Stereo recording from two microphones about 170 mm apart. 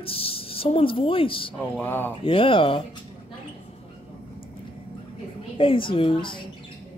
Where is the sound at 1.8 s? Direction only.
10° left (ahead or behind).